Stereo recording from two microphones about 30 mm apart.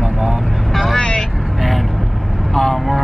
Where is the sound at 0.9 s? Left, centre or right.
Left.